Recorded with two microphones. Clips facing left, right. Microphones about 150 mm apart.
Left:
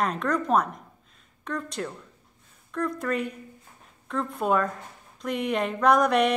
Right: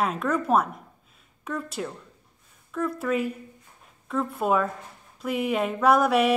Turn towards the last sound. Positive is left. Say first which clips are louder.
# right 1 dB
turn(degrees=-5)  # may be behind; listen again after turning